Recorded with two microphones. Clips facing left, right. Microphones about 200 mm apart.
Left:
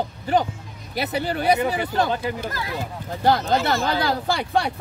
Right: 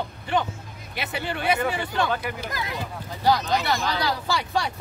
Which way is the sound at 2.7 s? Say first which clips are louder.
Left 3 dB; 50° left (ahead or behind).